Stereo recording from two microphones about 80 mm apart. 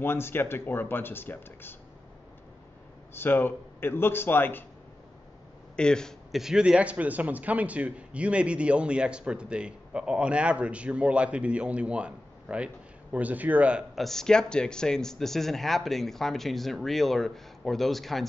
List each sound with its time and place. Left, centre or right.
0.0 s speech: left
3.2 s speech: left
5.8 s speech: centre
6.3 s a man's voice: centre
13.9 s speech: centre